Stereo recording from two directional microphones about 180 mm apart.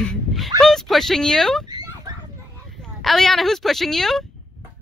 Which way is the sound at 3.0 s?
Centre (ahead or behind).